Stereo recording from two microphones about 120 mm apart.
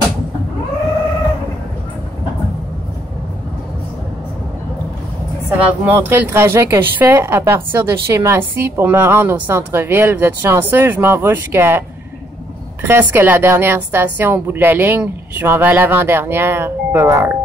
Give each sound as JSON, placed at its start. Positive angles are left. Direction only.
{"t": 5.6, "sound": "speech", "side_deg": -15}
{"t": 12.8, "sound": "a woman's voice", "side_deg": -20}